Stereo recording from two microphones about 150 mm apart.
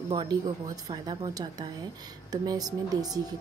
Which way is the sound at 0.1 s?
30° right (ahead or behind).